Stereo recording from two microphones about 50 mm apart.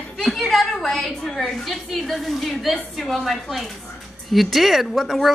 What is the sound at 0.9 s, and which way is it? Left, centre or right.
A woman's voice, centre.